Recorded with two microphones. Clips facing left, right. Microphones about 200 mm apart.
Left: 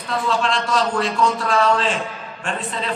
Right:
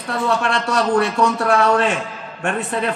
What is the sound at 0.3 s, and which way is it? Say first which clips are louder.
A man's voice: even; 65° right (ahead or behind).